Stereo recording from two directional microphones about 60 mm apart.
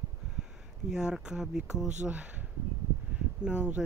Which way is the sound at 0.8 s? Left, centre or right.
Centre.